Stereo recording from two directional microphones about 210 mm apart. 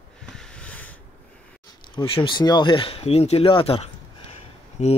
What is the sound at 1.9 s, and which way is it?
Speech, 25° left (ahead or behind).